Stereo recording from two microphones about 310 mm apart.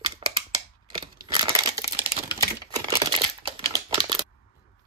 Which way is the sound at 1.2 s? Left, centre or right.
Centre.